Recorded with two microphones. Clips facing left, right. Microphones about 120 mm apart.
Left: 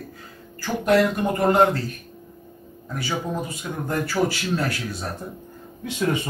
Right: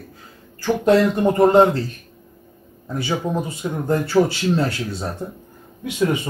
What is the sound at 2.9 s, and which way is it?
Speech, 25° right (ahead or behind).